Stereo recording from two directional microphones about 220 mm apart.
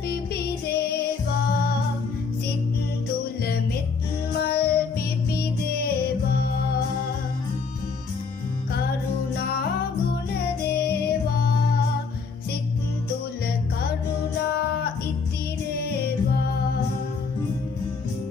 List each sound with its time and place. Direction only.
0.7 s music: 45° left (ahead or behind)
4.5 s music: 45° left (ahead or behind)
10.7 s music: 45° left (ahead or behind)